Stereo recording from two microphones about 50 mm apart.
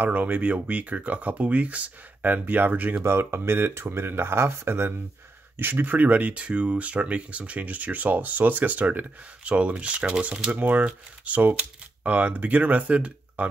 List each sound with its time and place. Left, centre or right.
0.0 s speech: right
3.0 s speech: right